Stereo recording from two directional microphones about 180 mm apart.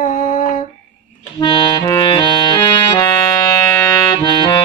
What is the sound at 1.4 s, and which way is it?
Music, 25° left (ahead or behind).